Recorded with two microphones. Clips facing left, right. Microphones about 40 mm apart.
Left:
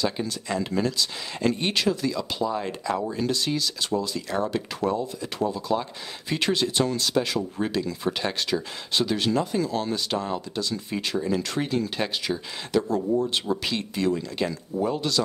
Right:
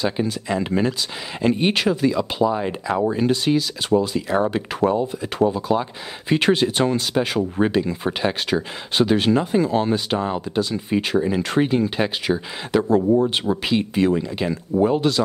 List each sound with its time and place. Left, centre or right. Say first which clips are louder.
0.0 s speech: right 5 dB; right
12.3 s speech: right 7 dB; right
12.7 s speech: right 6 dB; right
13.5 s speech: right 6 dB; right